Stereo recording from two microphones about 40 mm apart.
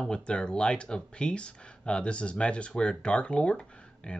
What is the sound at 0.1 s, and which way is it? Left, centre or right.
Speech, left.